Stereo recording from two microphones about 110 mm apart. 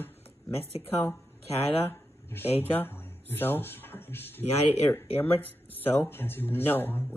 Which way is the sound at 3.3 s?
20° left (ahead or behind).